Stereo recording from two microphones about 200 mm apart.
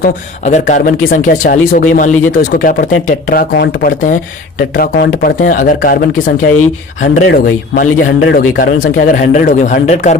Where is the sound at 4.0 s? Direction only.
40° left (ahead or behind).